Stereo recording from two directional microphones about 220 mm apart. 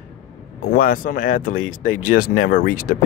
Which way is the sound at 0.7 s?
40° left (ahead or behind).